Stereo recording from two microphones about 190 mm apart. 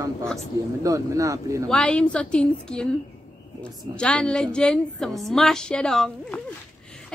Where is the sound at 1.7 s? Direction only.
5° left (ahead or behind).